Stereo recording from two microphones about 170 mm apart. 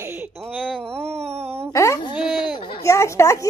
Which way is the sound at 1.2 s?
40° right (ahead or behind).